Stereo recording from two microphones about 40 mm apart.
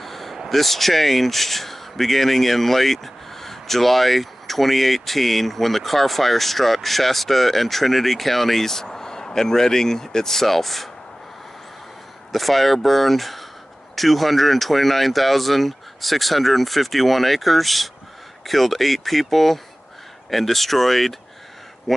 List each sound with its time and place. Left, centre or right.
0.0 s a sound: centre
0.5 s speech: centre
12.3 s speech: centre